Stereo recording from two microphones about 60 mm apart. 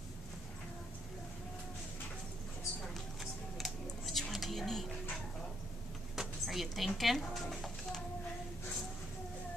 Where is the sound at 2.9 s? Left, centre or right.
Centre.